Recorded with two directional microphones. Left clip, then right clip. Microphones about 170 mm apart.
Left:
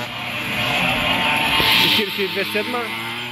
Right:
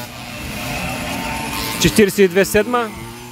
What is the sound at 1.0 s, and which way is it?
Vehicle, 25° right (ahead or behind).